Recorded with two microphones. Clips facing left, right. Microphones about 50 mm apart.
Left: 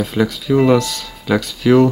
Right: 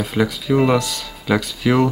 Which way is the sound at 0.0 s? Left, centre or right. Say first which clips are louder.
Left 2 dB; centre.